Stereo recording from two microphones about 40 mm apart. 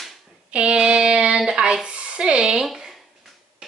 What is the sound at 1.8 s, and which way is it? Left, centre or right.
Speech, right.